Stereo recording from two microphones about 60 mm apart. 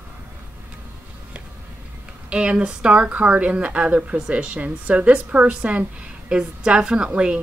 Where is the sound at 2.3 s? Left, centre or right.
Centre.